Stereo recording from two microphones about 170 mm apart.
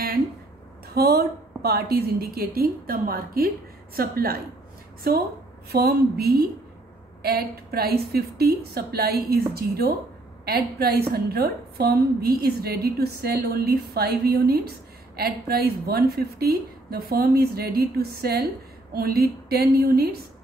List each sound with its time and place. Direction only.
0.9 s a woman's voice: 65° right (ahead or behind)
5.7 s a woman's voice: 65° right (ahead or behind)